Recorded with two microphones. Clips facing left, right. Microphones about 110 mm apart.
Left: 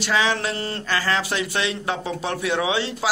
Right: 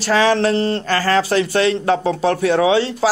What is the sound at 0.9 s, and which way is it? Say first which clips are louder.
A man's voice: right 5 dB; 40° right (ahead or behind).